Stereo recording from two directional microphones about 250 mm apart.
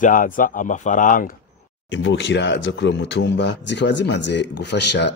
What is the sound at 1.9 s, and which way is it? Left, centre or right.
Speech, left.